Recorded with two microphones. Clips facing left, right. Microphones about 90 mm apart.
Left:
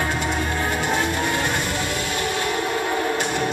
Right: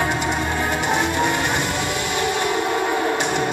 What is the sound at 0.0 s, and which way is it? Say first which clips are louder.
Music: right 2 dB; 20° right (ahead or behind).